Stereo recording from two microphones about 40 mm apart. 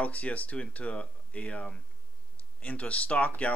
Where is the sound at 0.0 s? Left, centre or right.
Left.